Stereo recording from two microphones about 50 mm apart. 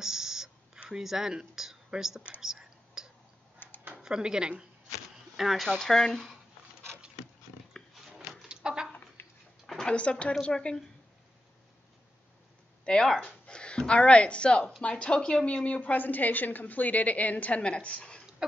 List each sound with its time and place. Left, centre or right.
0.0 s a sound: centre
0.8 s speech: centre
2.4 s whispering: centre
3.5 s typing: left
4.0 s speech: centre
5.1 s a sound: centre
5.8 s speech: centre
8.1 s a sound: centre
9.8 s a woman's voice: left
12.8 s a woman's voice: centre